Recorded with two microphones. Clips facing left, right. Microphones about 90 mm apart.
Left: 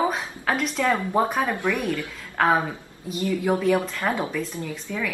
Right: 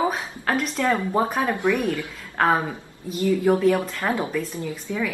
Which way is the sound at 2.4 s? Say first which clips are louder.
Even; centre (ahead or behind).